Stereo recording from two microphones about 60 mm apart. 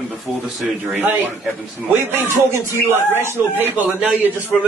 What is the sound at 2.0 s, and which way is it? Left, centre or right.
Speech, right.